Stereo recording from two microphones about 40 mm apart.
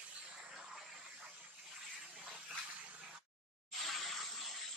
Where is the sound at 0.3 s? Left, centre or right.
Centre.